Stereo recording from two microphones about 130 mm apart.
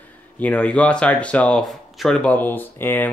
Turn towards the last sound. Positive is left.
turn(degrees=15)  # may be behind; listen again after turning